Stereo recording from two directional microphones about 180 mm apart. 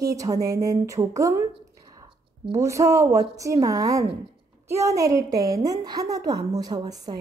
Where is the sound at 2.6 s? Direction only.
15° right (ahead or behind).